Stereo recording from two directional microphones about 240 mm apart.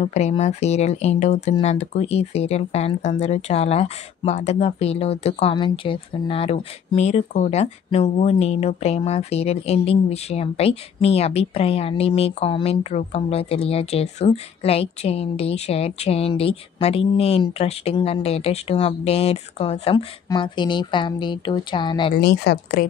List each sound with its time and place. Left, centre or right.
0.0 s speech: left
22.1 s speech: left